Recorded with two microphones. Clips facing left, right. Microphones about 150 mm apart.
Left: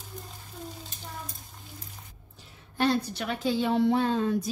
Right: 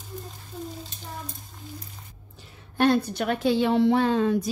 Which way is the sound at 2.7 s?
55° right (ahead or behind).